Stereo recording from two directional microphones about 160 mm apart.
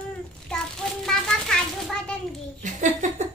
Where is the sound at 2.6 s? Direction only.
50° right (ahead or behind).